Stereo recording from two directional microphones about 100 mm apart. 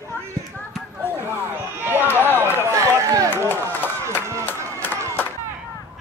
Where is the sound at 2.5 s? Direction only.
30° right (ahead or behind).